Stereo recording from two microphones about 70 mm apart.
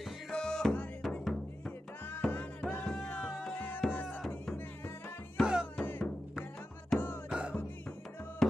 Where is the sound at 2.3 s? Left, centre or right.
Left.